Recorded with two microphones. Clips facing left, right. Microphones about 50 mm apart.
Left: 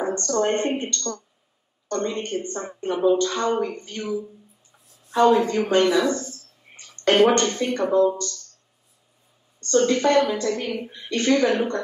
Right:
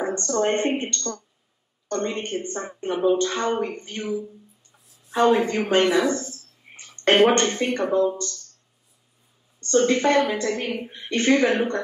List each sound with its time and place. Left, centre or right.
0.0 s a woman's voice: right
9.6 s a woman's voice: right